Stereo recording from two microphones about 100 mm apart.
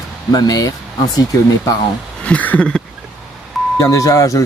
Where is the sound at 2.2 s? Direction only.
15° left (ahead or behind).